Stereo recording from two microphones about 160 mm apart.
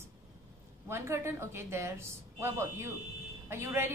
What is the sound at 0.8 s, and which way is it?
A woman's voice, 15° right (ahead or behind).